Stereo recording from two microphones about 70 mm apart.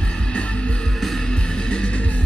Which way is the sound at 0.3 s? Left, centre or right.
Centre.